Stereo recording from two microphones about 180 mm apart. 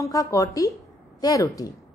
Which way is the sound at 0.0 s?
20° left (ahead or behind).